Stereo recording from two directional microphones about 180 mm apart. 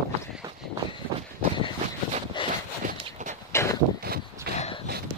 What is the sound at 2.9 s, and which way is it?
Walk, 45° right (ahead or behind).